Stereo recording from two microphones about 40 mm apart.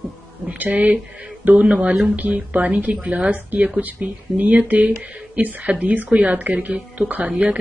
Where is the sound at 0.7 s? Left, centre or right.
Right.